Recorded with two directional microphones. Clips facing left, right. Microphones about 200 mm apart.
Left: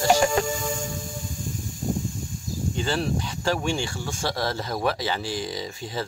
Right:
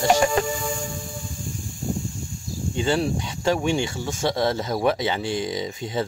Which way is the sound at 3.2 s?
20° right (ahead or behind).